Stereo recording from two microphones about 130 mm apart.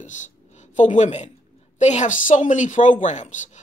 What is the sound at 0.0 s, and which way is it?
A woman's voice, 65° left (ahead or behind).